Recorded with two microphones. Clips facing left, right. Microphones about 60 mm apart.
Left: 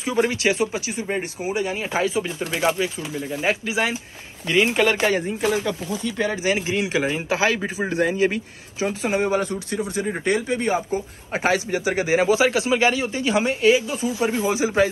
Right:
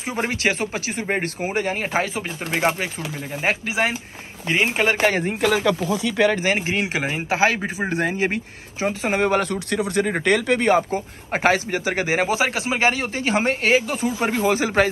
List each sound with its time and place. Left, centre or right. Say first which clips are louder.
0.0 s a man's voice: left 2 dB; right
5.0 s speech: right 1 dB; right
5.4 s speech: right 3 dB; right
6.3 s a man's voice: right 1 dB; right
10.9 s a man's voice: right 1 dB; right